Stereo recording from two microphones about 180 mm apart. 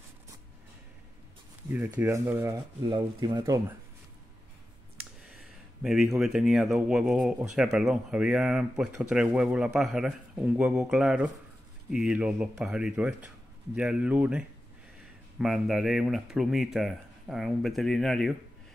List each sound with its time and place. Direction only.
1.7 s speech: 10° right (ahead or behind)
2.9 s speech: 25° right (ahead or behind)
5.3 s a sound: 5° right (ahead or behind)
6.1 s speech: centre (ahead or behind)